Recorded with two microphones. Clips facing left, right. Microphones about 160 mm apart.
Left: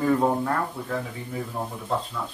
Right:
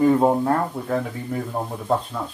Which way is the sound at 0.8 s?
55° right (ahead or behind).